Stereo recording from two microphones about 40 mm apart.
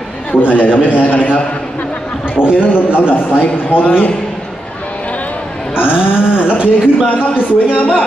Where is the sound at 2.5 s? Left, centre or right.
Left.